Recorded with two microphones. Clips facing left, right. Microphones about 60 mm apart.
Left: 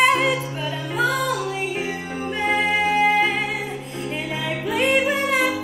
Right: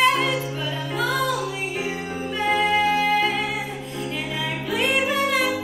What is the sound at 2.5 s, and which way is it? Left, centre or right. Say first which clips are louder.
Music: right 1 dB; centre.